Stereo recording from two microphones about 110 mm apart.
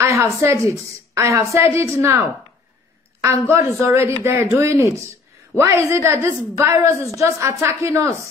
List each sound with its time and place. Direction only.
0.0 s a sound: 25° right (ahead or behind)
0.4 s a woman's voice: 25° right (ahead or behind)
3.2 s a woman's voice: 25° right (ahead or behind)